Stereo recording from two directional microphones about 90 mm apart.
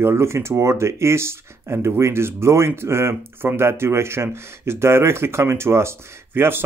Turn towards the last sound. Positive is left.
turn(degrees=-25)  # may be behind; listen again after turning